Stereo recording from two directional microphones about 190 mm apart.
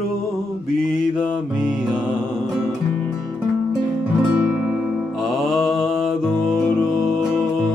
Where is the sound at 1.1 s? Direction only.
5° right (ahead or behind).